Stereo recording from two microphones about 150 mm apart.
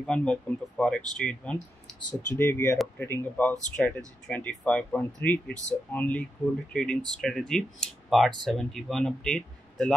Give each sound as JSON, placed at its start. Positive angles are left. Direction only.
{"t": 0.0, "sound": "speech", "side_deg": 5}
{"t": 2.3, "sound": "speech", "side_deg": 15}
{"t": 3.8, "sound": "speech", "side_deg": 0}